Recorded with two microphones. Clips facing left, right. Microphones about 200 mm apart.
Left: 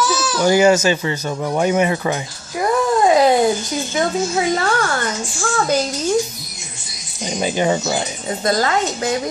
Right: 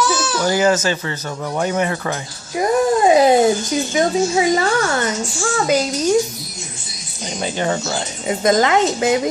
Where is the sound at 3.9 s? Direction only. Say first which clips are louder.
Right 2 dB; 15° right (ahead or behind).